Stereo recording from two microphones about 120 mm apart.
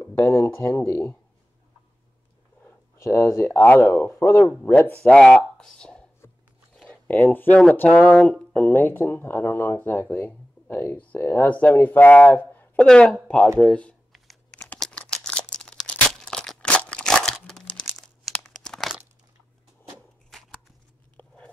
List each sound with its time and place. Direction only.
0.0 s speech: 25° left (ahead or behind)
3.0 s speech: 25° left (ahead or behind)
12.8 s speech: 5° left (ahead or behind)
14.1 s computer keyboard: centre (ahead or behind)
14.8 s tearing: 10° left (ahead or behind)
20.3 s scissors: centre (ahead or behind)